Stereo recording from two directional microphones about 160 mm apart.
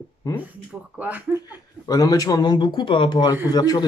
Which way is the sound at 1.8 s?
20° left (ahead or behind).